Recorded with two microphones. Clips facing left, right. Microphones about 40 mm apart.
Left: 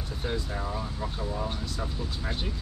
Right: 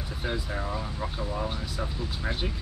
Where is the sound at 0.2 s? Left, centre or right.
Centre.